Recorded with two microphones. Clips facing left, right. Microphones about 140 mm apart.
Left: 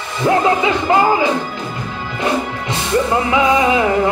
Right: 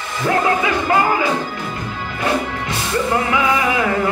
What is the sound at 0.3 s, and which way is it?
Speech, 20° left (ahead or behind).